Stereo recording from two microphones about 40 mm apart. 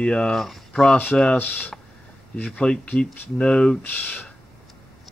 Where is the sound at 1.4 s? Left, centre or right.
Left.